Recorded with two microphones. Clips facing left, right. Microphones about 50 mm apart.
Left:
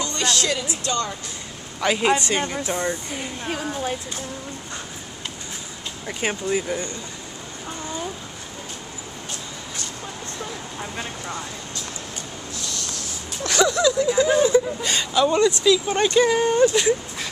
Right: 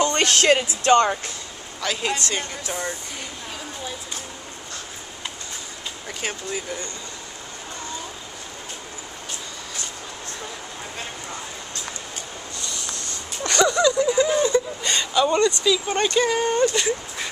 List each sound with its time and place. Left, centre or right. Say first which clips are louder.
0.0 s speech: right 5 dB; right
1.8 s speech: left 6 dB; centre
3.4 s speech: left 10 dB; left
6.0 s speech: left 6 dB; centre
12.5 s a sound: left 1 dB; centre
13.5 s speech: even; centre
14.1 s speech: left 2 dB; centre